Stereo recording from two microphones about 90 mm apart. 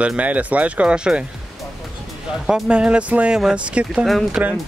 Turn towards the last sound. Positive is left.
turn(degrees=-10)  # may be behind; listen again after turning